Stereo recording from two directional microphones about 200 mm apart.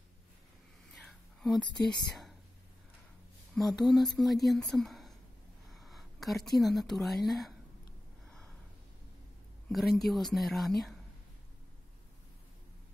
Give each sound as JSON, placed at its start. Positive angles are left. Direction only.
{"t": 1.0, "sound": "whispering", "side_deg": 0}
{"t": 1.9, "sound": "speech", "side_deg": 20}
{"t": 3.5, "sound": "a woman's voice", "side_deg": 0}
{"t": 9.7, "sound": "a woman's voice", "side_deg": 0}